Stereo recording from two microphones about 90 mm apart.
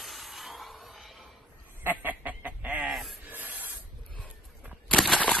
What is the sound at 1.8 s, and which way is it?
Chicken, 20° right (ahead or behind).